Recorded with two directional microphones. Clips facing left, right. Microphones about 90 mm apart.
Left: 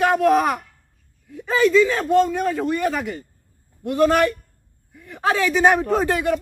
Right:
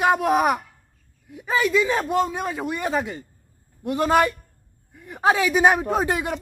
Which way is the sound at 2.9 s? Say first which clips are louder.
Right 1 dB; 25° right (ahead or behind).